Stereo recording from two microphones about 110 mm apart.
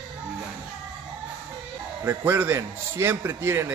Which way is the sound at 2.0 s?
20° right (ahead or behind).